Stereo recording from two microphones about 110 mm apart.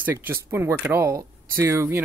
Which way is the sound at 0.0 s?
20° right (ahead or behind).